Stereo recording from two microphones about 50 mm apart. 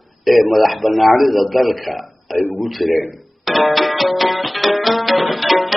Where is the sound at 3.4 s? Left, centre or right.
Centre.